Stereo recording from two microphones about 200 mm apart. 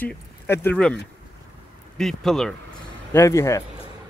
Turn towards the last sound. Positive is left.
turn(degrees=15)  # may be behind; listen again after turning